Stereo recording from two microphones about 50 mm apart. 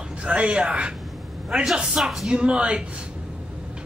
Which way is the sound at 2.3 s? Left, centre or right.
Right.